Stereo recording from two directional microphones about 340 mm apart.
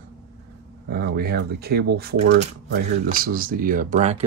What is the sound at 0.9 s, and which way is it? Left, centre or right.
Speech, right.